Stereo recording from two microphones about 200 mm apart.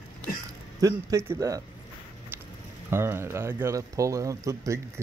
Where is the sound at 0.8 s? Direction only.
15° right (ahead or behind).